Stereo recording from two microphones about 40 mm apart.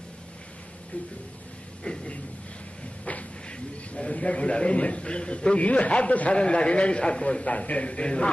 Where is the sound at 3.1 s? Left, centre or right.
Left.